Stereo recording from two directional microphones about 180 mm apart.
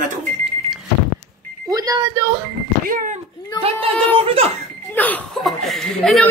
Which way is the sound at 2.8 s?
50° right (ahead or behind).